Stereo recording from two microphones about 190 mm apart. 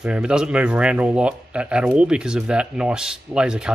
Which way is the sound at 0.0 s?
5° right (ahead or behind).